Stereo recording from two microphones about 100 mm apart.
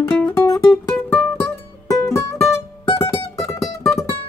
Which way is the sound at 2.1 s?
25° left (ahead or behind).